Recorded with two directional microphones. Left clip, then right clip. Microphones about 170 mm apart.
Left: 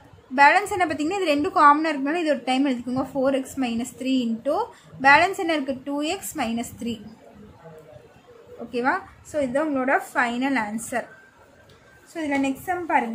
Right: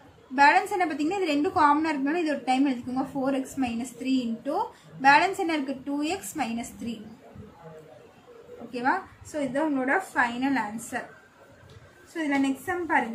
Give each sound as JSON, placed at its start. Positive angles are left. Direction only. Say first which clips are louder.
{"t": 0.4, "sound": "a woman's voice", "louder": "left 3 dB", "side_deg": 50}
{"t": 8.7, "sound": "a woman's voice", "louder": "left 3 dB", "side_deg": 50}
{"t": 12.1, "sound": "a woman's voice", "louder": "left 2 dB", "side_deg": 45}